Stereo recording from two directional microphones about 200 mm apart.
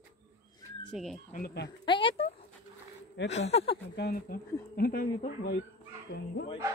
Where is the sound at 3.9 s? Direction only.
50° left (ahead or behind).